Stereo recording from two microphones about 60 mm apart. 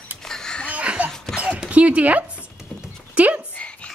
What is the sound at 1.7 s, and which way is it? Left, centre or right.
A woman's voice, right.